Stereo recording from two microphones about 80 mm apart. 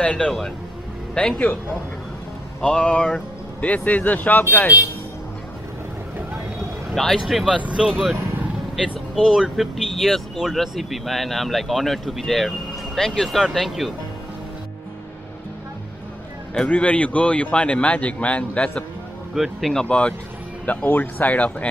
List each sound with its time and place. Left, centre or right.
0.0 s speech: centre
2.6 s speech: centre
7.0 s speech: centre
9.1 s speech: centre
16.5 s speech: centre
19.3 s speech: centre
19.7 s speech: centre